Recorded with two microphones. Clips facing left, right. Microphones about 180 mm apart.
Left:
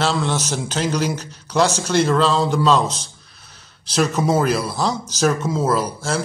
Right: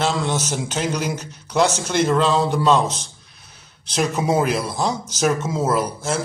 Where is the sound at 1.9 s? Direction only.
20° right (ahead or behind).